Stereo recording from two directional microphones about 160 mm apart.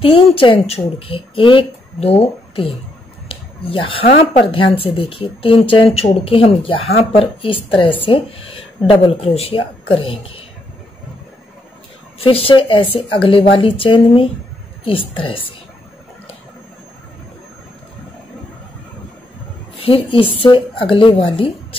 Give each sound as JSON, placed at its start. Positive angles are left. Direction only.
{"t": 0.0, "sound": "speech", "side_deg": 35}
{"t": 3.3, "sound": "a sound", "side_deg": 35}
{"t": 4.8, "sound": "speech", "side_deg": 35}
{"t": 12.2, "sound": "speech", "side_deg": 35}
{"t": 19.8, "sound": "speech", "side_deg": 35}